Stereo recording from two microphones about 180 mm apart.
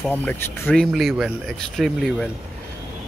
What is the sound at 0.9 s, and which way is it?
Speech, centre (ahead or behind).